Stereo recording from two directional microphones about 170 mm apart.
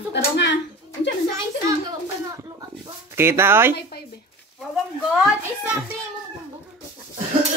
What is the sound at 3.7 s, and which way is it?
Speech, 70° left (ahead or behind).